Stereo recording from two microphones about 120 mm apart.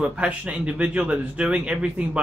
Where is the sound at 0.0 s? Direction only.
10° right (ahead or behind).